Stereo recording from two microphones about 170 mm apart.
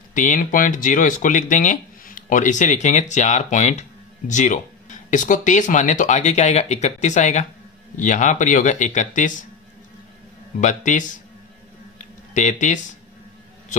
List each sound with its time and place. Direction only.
0.1 s speech: 50° left (ahead or behind)
10.6 s speech: 45° left (ahead or behind)
12.4 s speech: 45° left (ahead or behind)